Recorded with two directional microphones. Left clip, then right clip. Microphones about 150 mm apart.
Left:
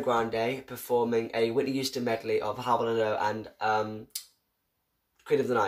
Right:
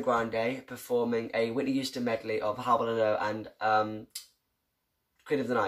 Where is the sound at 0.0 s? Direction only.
20° left (ahead or behind).